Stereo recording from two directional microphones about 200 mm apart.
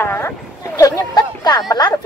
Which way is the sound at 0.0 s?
15° left (ahead or behind).